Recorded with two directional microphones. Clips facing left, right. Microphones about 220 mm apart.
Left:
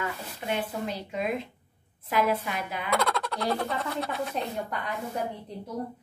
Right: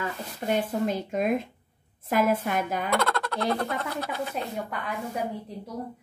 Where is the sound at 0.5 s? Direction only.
45° right (ahead or behind).